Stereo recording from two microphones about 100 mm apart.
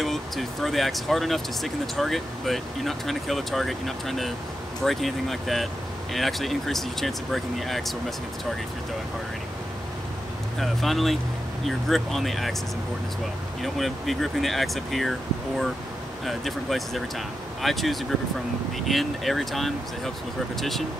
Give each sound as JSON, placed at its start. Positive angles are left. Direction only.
{"t": 0.0, "sound": "speech", "side_deg": 0}
{"t": 10.6, "sound": "speech", "side_deg": 0}
{"t": 13.6, "sound": "speech", "side_deg": 0}